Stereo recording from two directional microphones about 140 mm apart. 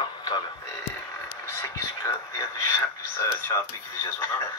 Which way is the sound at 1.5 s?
20° left (ahead or behind).